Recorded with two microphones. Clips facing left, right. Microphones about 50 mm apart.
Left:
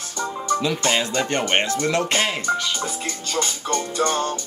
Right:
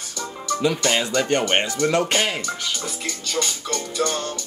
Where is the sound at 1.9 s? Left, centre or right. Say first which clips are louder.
Right 1 dB; right.